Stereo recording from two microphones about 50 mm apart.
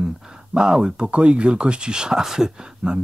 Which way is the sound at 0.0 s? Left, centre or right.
Centre.